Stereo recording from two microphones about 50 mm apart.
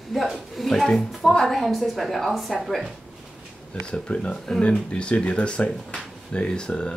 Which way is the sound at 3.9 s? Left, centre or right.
Left.